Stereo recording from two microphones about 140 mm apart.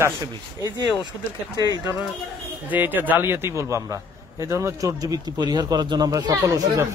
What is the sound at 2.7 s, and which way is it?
A man's voice, 15° right (ahead or behind).